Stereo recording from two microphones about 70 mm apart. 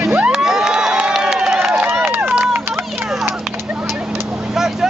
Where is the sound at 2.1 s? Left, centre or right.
Right.